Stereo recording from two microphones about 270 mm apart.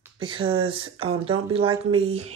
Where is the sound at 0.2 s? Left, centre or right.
Centre.